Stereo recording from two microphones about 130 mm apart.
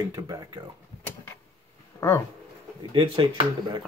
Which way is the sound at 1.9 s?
25° left (ahead or behind).